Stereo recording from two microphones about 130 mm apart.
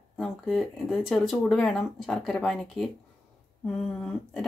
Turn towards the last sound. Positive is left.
turn(degrees=5)  # may be behind; listen again after turning